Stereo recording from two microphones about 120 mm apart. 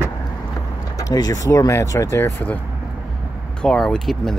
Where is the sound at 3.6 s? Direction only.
5° left (ahead or behind).